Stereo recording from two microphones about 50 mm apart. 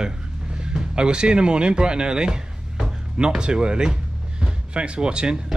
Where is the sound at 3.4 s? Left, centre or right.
Centre.